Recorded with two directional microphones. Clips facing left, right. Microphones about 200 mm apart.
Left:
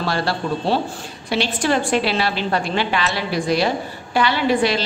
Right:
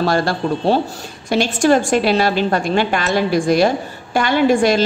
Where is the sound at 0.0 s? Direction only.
45° right (ahead or behind).